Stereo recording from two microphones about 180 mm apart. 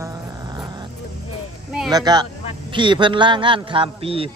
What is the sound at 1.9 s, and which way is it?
A man's voice, 20° right (ahead or behind).